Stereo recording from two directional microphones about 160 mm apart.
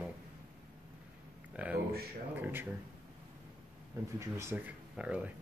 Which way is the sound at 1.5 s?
10° right (ahead or behind).